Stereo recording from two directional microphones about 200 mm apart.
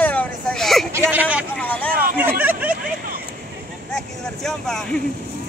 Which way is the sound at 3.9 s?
Centre (ahead or behind).